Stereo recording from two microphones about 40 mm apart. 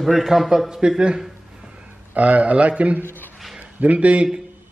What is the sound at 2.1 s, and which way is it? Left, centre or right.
A man's voice, right.